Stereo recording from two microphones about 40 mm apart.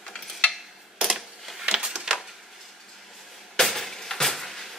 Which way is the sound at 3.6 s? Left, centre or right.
Centre.